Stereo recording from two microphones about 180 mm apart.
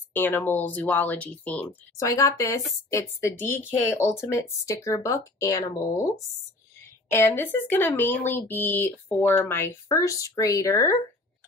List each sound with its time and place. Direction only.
0.1 s speech: 10° left (ahead or behind)